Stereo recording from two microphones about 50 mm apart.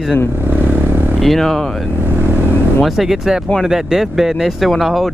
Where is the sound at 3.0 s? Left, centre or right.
Centre.